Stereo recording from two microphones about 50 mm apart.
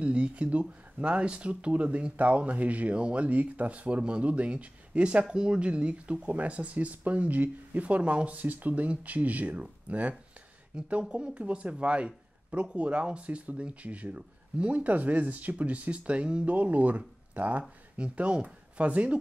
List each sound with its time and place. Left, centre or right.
0.0 s speech: right